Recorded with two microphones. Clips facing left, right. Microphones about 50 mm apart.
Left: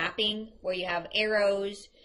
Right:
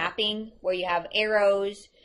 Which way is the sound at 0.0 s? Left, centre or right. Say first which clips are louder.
Right 2 dB; right.